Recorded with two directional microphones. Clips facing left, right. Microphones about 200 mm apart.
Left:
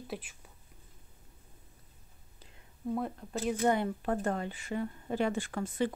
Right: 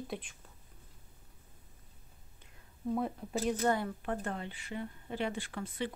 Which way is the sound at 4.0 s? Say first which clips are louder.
Left 5 dB; 40° left (ahead or behind).